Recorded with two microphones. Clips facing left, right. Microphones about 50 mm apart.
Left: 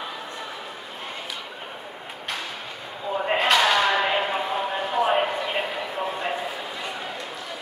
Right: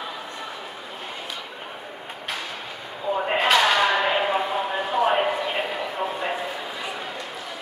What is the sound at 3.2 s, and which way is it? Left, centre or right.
Slam, centre.